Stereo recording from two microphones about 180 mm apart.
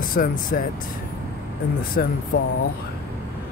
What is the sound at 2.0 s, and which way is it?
Speech, 55° left (ahead or behind).